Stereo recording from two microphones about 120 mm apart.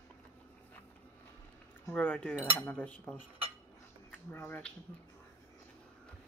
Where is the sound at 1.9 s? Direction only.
15° left (ahead or behind).